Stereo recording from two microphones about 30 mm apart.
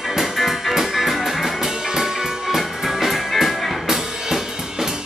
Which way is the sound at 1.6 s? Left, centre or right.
Centre.